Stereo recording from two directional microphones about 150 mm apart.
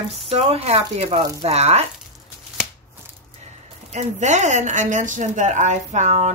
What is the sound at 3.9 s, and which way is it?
Speech, 50° right (ahead or behind).